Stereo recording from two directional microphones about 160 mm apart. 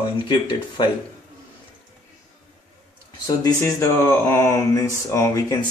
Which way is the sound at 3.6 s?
15° left (ahead or behind).